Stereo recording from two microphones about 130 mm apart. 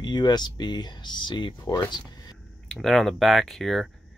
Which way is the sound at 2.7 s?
Centre (ahead or behind).